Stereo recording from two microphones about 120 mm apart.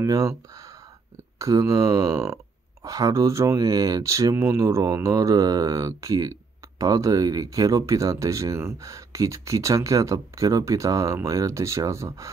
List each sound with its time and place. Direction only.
0.0 s speech: 25° right (ahead or behind)